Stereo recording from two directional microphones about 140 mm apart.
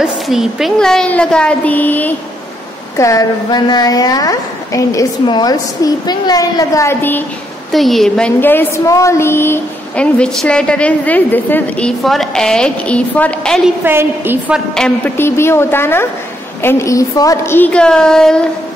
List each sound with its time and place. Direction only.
0.0 s a woman's voice: 5° right (ahead or behind); by 2.1 s 10° left (ahead or behind)
3.0 s a woman's voice: 25° left (ahead or behind)
7.7 s a woman's voice: centre (ahead or behind)
8.4 s speech: 15° left (ahead or behind)
13.8 s a woman's voice: 15° right (ahead or behind)
14.7 s a woman's voice: 5° left (ahead or behind)
15.1 s speech: 15° left (ahead or behind)